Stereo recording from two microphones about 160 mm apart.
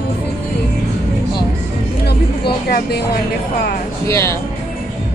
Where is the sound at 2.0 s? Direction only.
85° left.